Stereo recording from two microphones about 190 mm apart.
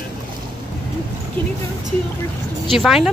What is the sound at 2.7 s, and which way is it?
Speech, centre (ahead or behind).